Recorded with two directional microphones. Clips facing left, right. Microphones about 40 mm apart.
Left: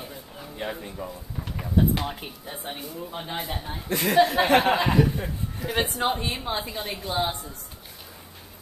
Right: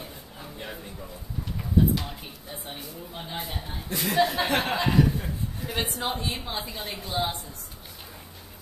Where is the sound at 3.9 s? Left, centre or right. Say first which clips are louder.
Left 4 dB; left.